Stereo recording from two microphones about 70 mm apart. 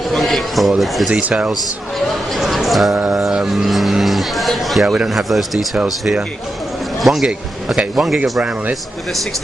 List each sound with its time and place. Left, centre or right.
0.1 s music: centre
1.1 s speech: centre
1.5 s speech: centre
4.8 s speech: centre
5.1 s speech: centre
7.0 s speech: centre
8.2 s a man's voice: right